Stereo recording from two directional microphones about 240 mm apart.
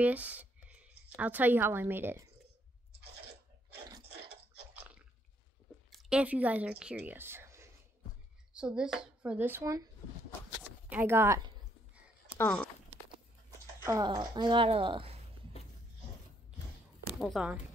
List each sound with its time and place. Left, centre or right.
0.0 s speech: centre
5.9 s speech: centre
10.6 s a sound: centre
12.4 s speech: centre
13.8 s speech: centre
17.2 s speech: centre